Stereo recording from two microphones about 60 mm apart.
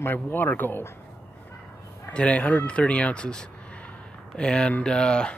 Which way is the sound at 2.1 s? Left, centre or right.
Left.